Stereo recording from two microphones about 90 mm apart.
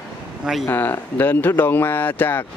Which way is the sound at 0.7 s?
20° left (ahead or behind).